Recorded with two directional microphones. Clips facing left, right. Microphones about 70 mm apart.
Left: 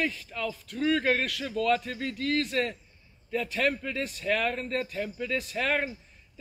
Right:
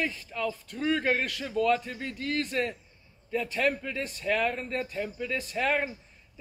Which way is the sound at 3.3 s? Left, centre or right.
Centre.